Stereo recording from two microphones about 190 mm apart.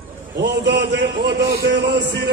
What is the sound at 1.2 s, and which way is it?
Speech, 65° right (ahead or behind).